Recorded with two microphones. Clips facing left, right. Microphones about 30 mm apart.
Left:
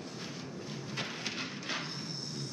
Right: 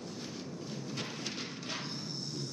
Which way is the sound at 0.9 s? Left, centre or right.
Left.